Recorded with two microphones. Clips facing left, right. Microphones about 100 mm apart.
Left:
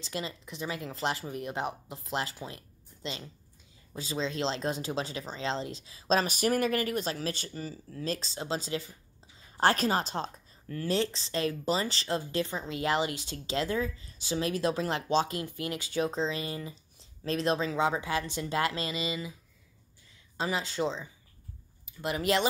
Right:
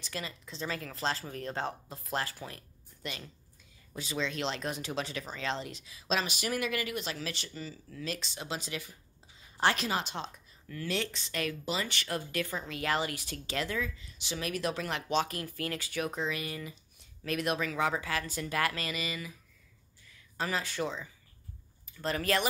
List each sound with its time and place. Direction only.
0.0 s a woman's voice: 25° left (ahead or behind)
9.6 s a woman's voice: 40° left (ahead or behind); by 19.3 s 25° left (ahead or behind)
20.3 s a woman's voice: 20° left (ahead or behind)